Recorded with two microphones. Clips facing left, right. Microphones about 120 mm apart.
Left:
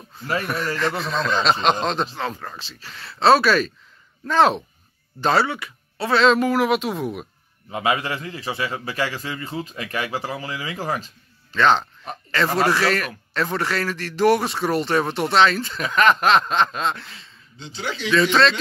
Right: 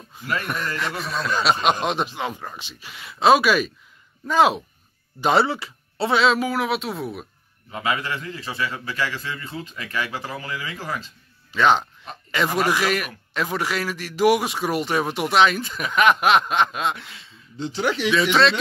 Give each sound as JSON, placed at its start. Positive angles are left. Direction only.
{"t": 0.2, "sound": "speech", "side_deg": -15}
{"t": 5.2, "sound": "speech", "side_deg": -25}
{"t": 6.1, "sound": "speech", "side_deg": -5}
{"t": 7.7, "sound": "a man's voice", "side_deg": 25}
{"t": 11.5, "sound": "speech", "side_deg": -10}